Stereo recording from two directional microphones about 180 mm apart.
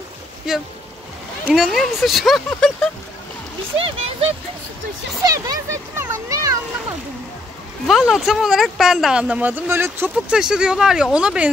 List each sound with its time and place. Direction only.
0.5 s speech: centre (ahead or behind)
3.7 s speech: 30° right (ahead or behind)
5.2 s a child's voice: 20° right (ahead or behind)
7.8 s speech: centre (ahead or behind)